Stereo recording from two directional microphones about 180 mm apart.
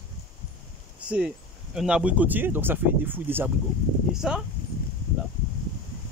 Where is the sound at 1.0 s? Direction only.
5° right (ahead or behind).